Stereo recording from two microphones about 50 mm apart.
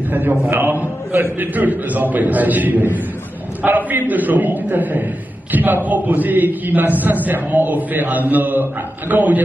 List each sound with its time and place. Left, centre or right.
0.1 s a man's voice: right